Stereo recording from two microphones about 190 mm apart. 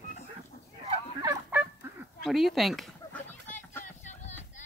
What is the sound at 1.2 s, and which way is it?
Fowl, 15° right (ahead or behind).